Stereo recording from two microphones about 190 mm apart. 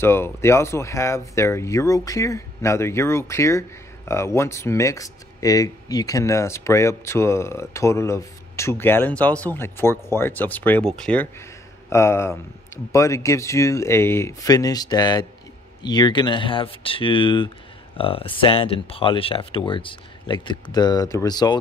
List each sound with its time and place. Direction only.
0.0 s speech: 10° left (ahead or behind)